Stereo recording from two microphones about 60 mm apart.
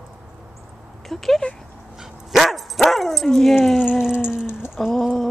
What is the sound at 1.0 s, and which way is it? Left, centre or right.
Speech, centre.